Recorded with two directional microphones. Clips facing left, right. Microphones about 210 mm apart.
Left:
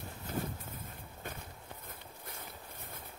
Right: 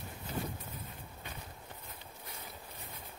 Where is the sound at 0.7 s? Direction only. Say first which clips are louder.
Even; 50° left (ahead or behind).